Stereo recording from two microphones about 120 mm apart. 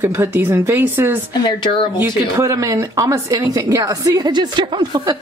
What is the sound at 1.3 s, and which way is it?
Speech, 40° left (ahead or behind).